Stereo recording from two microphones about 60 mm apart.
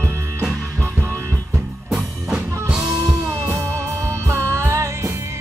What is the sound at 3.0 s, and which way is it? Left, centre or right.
Music, right.